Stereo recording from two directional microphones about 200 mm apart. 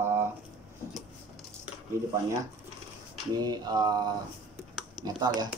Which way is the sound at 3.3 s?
20° right (ahead or behind).